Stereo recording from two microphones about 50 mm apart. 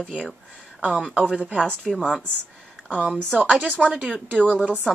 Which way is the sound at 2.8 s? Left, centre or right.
Right.